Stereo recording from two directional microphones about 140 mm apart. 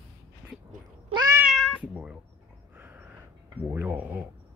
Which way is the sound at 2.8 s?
15° right (ahead or behind).